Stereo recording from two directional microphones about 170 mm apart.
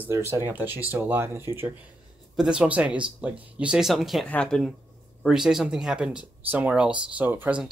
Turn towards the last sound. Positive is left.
turn(degrees=-10)  # may be behind; listen again after turning